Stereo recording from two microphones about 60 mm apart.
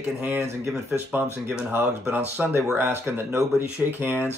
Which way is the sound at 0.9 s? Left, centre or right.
Right.